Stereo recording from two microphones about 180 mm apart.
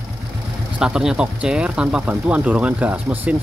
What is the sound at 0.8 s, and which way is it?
Speech, 5° right (ahead or behind).